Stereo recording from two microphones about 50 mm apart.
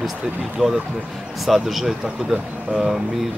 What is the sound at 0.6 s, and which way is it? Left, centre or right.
Speech, right.